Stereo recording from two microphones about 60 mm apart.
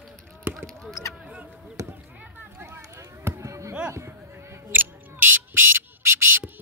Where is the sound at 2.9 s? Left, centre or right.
Right.